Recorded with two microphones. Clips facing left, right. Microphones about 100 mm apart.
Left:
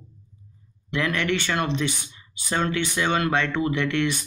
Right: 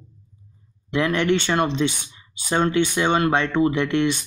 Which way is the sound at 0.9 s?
25° right (ahead or behind).